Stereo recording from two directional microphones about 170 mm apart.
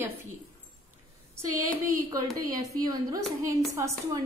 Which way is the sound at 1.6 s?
20° right (ahead or behind).